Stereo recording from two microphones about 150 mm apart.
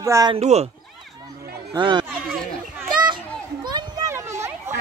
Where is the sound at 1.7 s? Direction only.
30° right (ahead or behind).